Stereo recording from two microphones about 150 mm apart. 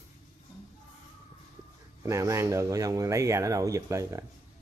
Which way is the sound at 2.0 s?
20° right (ahead or behind).